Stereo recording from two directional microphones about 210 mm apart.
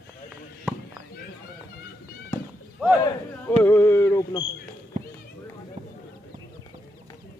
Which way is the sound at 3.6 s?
10° left (ahead or behind).